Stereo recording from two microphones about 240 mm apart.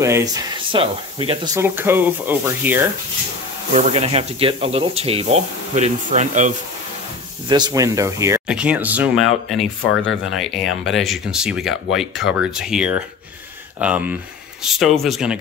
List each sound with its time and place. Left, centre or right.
0.0 s speech: centre
3.7 s speech: right
7.4 s speech: centre